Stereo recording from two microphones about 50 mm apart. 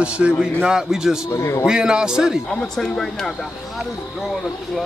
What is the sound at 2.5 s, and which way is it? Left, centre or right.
Speech, centre.